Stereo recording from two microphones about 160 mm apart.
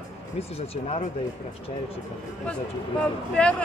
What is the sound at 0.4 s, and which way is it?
Speech, 40° left (ahead or behind).